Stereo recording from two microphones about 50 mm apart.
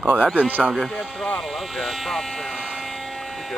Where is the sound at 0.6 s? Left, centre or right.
Centre.